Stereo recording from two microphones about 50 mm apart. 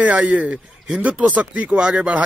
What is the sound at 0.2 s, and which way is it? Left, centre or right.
A man's voice, right.